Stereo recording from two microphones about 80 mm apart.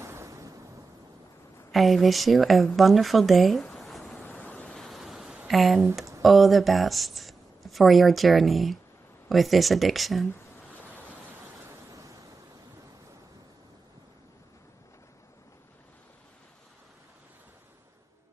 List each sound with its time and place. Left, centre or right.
0.0 s a sound: right
1.7 s speech: centre
4.2 s vehicle: centre
4.6 s waves: centre
5.5 s speech: centre